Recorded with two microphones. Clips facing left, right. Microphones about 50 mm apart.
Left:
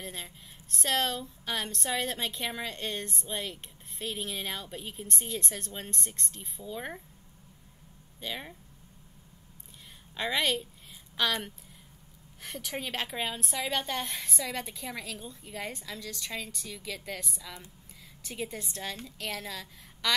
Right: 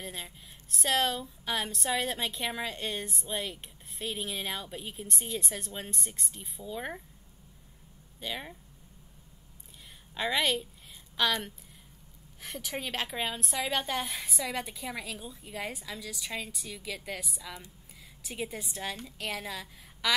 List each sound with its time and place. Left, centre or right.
0.0 s a woman's voice: centre
8.2 s a woman's voice: centre
10.1 s a woman's voice: centre
12.4 s a woman's voice: centre